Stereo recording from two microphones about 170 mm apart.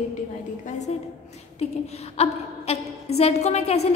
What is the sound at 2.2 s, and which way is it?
A woman's voice, 35° left (ahead or behind).